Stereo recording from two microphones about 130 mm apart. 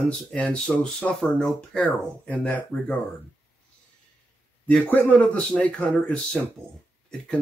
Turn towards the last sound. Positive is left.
turn(degrees=10)  # may be behind; listen again after turning